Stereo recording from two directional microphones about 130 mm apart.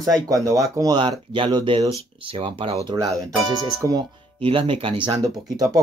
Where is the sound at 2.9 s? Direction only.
25° right (ahead or behind).